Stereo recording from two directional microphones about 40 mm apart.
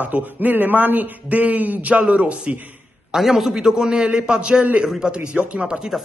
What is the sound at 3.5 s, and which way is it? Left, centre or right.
Speech, centre.